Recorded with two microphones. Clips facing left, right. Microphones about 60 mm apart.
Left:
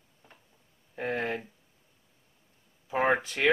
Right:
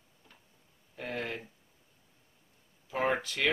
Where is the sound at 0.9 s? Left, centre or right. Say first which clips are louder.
Left 6 dB; left.